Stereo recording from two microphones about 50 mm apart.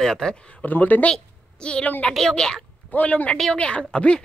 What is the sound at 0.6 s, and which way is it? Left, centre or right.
Speech, left.